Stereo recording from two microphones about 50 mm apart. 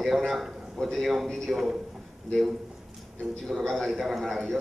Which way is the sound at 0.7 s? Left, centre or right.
Centre.